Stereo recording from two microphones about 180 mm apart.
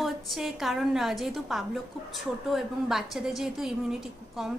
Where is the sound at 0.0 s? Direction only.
Centre (ahead or behind).